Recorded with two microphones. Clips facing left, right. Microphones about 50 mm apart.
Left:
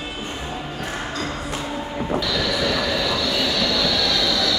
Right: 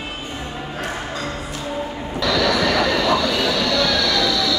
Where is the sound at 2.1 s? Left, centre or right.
Right.